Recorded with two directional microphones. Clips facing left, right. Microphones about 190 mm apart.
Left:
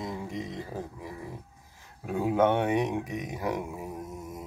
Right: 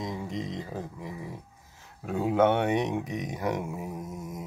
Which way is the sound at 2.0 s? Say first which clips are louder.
Right 1 dB; 10° left (ahead or behind).